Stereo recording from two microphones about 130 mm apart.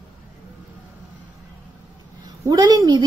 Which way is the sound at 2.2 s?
30° right (ahead or behind).